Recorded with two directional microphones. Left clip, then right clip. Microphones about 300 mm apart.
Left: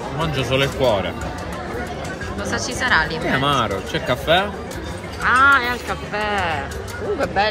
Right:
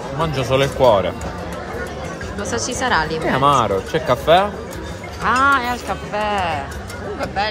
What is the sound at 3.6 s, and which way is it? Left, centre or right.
Speech, right.